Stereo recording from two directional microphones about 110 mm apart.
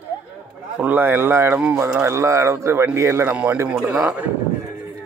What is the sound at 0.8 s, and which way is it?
A man's voice, 15° right (ahead or behind).